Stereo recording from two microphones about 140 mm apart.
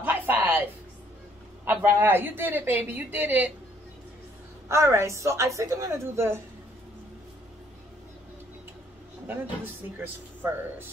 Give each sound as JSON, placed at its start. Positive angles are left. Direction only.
{"t": 0.0, "sound": "a sound", "side_deg": -15}
{"t": 1.6, "sound": "speech", "side_deg": -15}
{"t": 4.6, "sound": "speech", "side_deg": -20}
{"t": 9.3, "sound": "speech", "side_deg": -15}